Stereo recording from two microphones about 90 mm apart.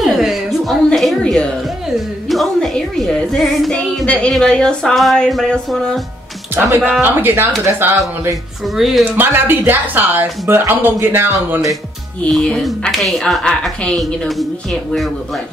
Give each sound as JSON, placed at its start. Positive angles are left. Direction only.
{"t": 0.0, "sound": "a sound", "side_deg": -5}
{"t": 2.2, "sound": "speech", "side_deg": 0}
{"t": 4.0, "sound": "speech", "side_deg": 15}
{"t": 6.8, "sound": "speech", "side_deg": -20}
{"t": 8.6, "sound": "speech", "side_deg": 0}
{"t": 9.1, "sound": "speech", "side_deg": -25}
{"t": 12.3, "sound": "speech", "side_deg": 5}